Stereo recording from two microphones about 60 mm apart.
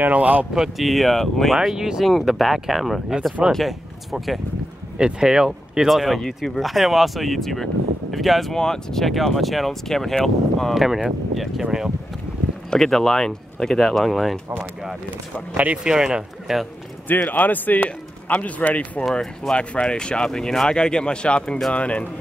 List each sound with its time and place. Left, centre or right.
0.0 s speech: right
0.6 s speech: centre
4.9 s speech: centre
12.7 s speech: centre
15.5 s speech: right
15.8 s speech: centre
17.3 s speech: left